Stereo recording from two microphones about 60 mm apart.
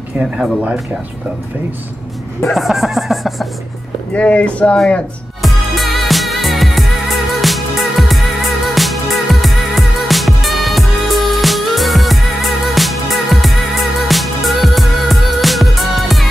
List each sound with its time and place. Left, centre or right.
2.5 s a sound: centre
4.1 s speech: left
5.4 s music: centre